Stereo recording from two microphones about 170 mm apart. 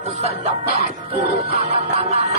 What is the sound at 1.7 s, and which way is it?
Music, 35° right (ahead or behind).